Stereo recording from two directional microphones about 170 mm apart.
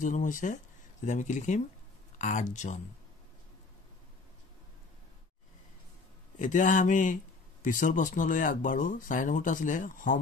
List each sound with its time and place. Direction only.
0.0 s speech: 50° left (ahead or behind)
6.3 s speech: 50° left (ahead or behind)